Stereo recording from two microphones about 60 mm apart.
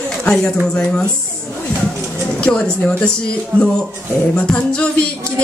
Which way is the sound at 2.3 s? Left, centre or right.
Centre.